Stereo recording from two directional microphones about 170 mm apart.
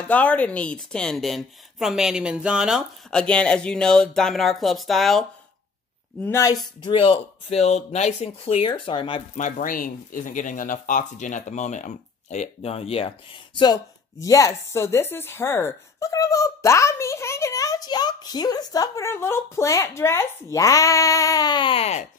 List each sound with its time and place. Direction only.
0.1 s a woman's voice: 10° left (ahead or behind)
6.2 s speech: 20° left (ahead or behind)
9.4 s speech: 55° left (ahead or behind); by 22.0 s 35° left (ahead or behind)